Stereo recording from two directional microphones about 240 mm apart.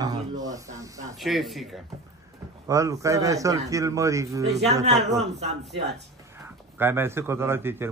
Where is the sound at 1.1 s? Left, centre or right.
Centre.